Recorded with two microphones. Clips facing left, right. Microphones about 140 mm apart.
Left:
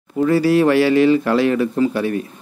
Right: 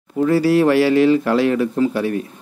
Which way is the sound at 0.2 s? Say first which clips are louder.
Even; centre (ahead or behind).